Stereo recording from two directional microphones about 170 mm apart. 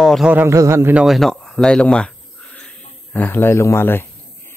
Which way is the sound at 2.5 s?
10° left (ahead or behind).